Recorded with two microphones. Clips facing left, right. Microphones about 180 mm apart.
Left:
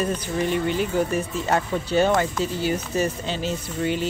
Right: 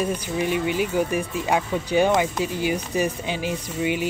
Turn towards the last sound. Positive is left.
turn(degrees=-10)  # may be behind; listen again after turning